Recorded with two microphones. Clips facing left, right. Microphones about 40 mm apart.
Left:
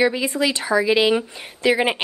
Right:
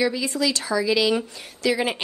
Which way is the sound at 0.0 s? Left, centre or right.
Left.